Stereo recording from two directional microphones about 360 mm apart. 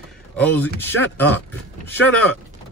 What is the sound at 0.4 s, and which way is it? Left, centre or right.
A man's voice, centre.